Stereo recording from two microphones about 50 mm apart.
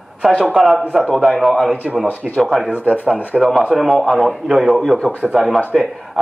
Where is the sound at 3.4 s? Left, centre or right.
Centre.